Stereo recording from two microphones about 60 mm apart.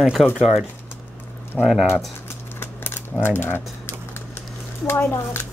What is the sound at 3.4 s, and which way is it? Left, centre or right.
Typing, left.